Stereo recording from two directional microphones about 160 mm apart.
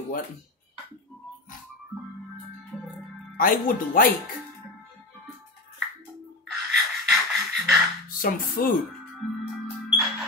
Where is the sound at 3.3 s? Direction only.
60° left (ahead or behind).